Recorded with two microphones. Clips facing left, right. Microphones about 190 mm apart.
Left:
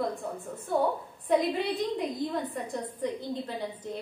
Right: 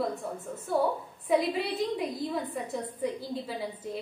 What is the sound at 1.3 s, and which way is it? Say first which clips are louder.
A woman's voice: left 1 dB; 5° right (ahead or behind).